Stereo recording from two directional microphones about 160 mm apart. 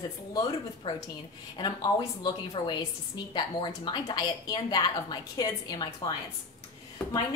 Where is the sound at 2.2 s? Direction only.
30° left (ahead or behind).